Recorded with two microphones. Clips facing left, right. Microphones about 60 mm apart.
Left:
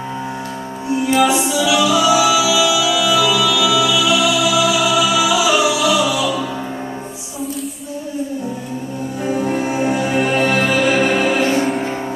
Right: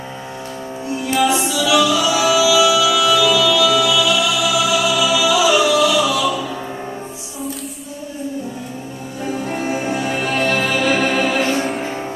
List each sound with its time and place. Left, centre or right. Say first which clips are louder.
1.3 s music: even; left
9.5 s music: left 1 dB; centre
11.1 s music: left 2 dB; centre